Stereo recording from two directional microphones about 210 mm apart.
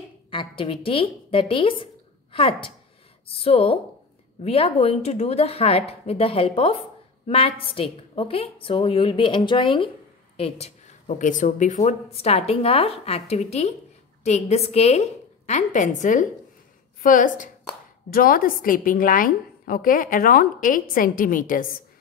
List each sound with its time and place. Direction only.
0.3 s a woman's voice: 25° left (ahead or behind); by 21.6 s 40° left (ahead or behind)